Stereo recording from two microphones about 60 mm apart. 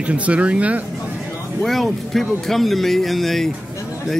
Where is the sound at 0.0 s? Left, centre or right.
Right.